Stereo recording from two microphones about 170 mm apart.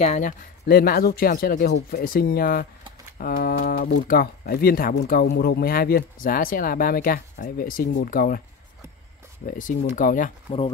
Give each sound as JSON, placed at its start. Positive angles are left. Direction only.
{"t": 0.0, "sound": "speech", "side_deg": 45}
{"t": 9.5, "sound": "speech", "side_deg": 50}